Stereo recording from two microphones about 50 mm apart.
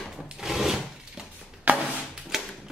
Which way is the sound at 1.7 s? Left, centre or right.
Right.